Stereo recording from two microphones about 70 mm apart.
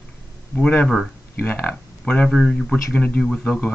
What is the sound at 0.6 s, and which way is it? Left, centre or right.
Speech, centre.